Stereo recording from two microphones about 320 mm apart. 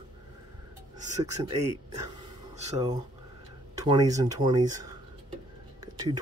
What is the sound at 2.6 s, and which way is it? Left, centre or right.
Speech, centre.